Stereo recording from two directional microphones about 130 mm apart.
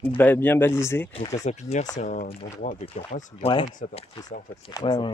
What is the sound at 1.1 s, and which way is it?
Speech, 45° left (ahead or behind).